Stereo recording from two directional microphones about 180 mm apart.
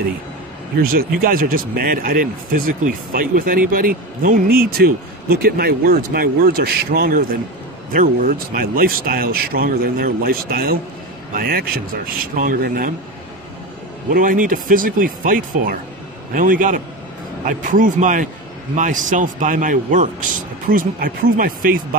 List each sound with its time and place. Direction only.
0.7 s speech: 55° right (ahead or behind)
14.1 s speech: 45° right (ahead or behind)